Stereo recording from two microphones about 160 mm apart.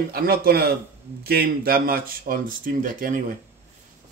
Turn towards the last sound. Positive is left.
turn(degrees=-60)  # may be behind; listen again after turning